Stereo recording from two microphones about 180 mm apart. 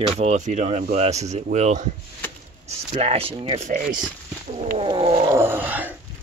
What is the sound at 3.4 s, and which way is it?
Speech, 35° right (ahead or behind).